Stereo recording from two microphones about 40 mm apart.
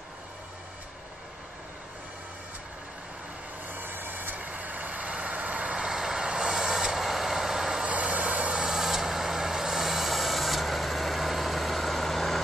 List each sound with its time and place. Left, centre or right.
3.6 s vehicle: right
4.5 s vehicle: right
5.9 s vehicle: centre
7.8 s vehicle: right
8.5 s vehicle: centre